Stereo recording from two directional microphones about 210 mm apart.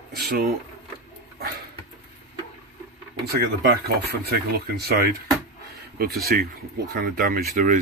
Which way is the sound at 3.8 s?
50° right (ahead or behind).